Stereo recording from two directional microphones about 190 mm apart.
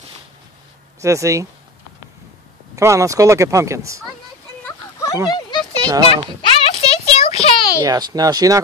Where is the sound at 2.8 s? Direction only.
15° right (ahead or behind).